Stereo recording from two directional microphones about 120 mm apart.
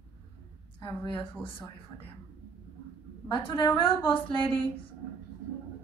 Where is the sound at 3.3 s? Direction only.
40° left (ahead or behind).